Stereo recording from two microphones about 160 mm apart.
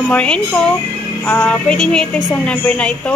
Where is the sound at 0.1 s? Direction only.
10° left (ahead or behind).